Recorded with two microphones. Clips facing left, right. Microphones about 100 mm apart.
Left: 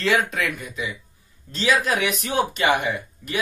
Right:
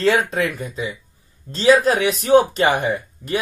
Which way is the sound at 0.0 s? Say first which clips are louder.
Right 4 dB; 35° right (ahead or behind).